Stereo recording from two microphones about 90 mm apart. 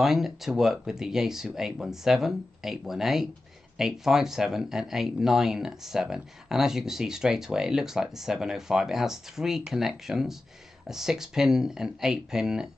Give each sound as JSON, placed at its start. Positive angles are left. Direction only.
{"t": 0.0, "sound": "speech", "side_deg": -5}